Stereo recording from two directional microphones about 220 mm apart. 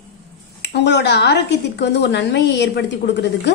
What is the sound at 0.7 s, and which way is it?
A woman's voice, 50° left (ahead or behind).